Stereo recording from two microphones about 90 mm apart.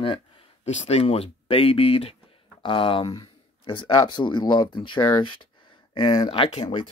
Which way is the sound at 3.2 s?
65° left (ahead or behind).